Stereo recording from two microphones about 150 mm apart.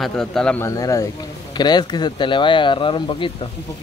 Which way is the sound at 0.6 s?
20° left (ahead or behind).